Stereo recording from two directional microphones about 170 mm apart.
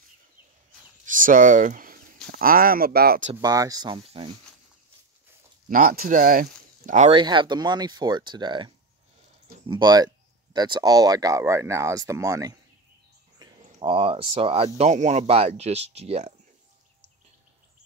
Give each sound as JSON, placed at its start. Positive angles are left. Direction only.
{"t": 1.0, "sound": "a sound", "side_deg": -50}
{"t": 2.3, "sound": "speech", "side_deg": -55}
{"t": 3.3, "sound": "speech", "side_deg": -20}
{"t": 3.9, "sound": "speech", "side_deg": -35}
{"t": 5.7, "sound": "speech", "side_deg": -55}
{"t": 6.8, "sound": "speech", "side_deg": -45}
{"t": 7.1, "sound": "speech", "side_deg": -30}